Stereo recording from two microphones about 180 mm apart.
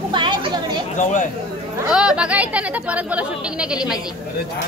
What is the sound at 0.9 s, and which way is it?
Speech, 45° left (ahead or behind).